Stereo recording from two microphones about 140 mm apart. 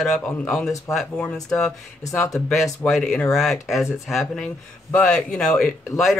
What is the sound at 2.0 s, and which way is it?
Speech, 25° left (ahead or behind).